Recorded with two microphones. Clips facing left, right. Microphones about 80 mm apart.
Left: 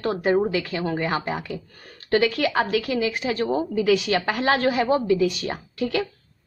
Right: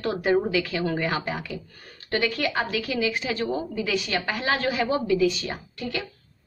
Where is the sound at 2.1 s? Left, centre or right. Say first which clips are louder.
Left 5 dB; left.